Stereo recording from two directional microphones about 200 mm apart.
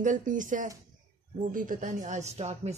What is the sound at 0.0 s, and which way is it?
Speech, 40° right (ahead or behind).